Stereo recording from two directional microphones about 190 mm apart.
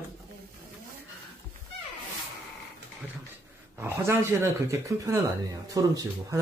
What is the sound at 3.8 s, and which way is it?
Speech, 15° right (ahead or behind).